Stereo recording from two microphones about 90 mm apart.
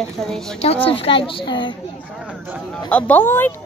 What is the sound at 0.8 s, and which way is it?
Speech, 90° left.